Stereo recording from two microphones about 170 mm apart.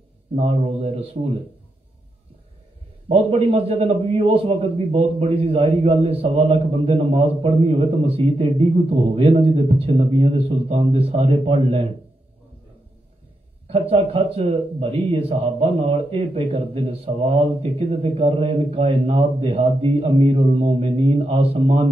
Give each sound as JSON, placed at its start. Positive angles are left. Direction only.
{"t": 0.4, "sound": "a man's voice", "side_deg": -35}
{"t": 3.1, "sound": "a man's voice", "side_deg": -35}
{"t": 13.7, "sound": "a man's voice", "side_deg": -35}